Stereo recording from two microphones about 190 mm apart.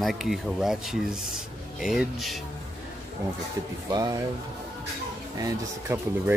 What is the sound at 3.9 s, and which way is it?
Speech, 20° right (ahead or behind).